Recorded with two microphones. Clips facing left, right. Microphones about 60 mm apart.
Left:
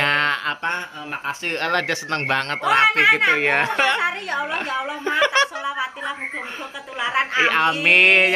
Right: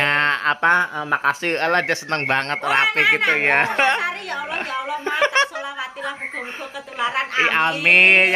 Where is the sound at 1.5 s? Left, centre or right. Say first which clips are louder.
Right 3 dB; right.